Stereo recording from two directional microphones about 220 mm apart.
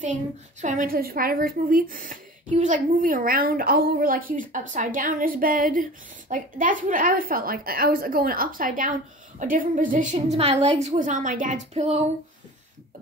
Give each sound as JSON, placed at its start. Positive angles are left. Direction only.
{"t": 0.0, "sound": "a woman's voice", "side_deg": -35}